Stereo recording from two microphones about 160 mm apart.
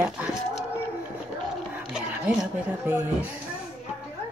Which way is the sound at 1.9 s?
5° right (ahead or behind).